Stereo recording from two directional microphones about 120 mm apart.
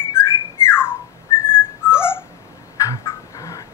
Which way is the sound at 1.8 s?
20° left (ahead or behind).